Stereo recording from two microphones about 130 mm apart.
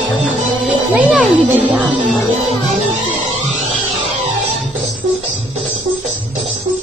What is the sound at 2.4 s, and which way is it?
Music, 55° right (ahead or behind).